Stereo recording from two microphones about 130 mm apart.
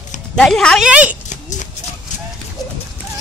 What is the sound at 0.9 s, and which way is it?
Speech, 10° right (ahead or behind).